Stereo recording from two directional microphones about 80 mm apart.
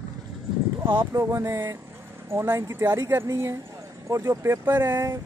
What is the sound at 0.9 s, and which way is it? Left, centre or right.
Speech, right.